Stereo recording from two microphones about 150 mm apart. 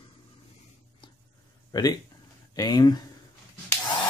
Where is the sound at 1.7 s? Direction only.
25° left (ahead or behind).